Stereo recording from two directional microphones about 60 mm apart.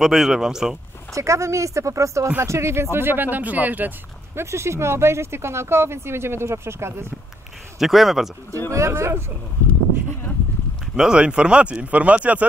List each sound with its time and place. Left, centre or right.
0.0 s speech: centre
1.1 s speech: right
4.4 s speech: right
7.8 s speech: centre
8.7 s speech: right
11.0 s speech: centre